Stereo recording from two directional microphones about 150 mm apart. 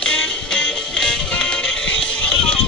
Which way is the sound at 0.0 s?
10° left (ahead or behind).